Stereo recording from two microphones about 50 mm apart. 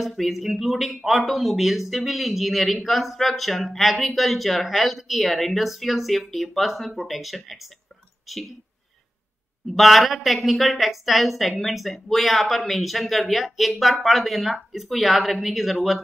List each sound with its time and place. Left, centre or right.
0.2 s speech: centre
9.8 s speech: centre